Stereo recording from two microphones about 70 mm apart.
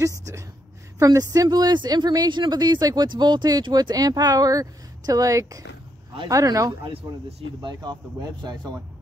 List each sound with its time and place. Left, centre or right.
0.9 s speech: right
7.6 s speech: right